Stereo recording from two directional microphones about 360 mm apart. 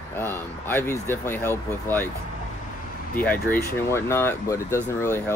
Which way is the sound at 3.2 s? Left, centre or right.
Centre.